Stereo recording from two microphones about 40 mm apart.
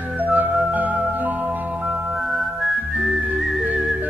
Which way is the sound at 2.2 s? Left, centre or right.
Centre.